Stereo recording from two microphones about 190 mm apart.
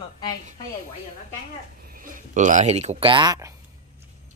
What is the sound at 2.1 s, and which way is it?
Speech, 40° right (ahead or behind).